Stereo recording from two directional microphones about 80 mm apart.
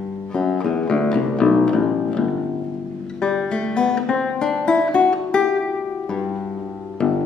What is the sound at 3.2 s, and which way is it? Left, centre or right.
Guitar, centre.